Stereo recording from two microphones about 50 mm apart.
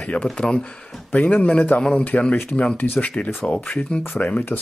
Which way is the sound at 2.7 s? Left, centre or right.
Left.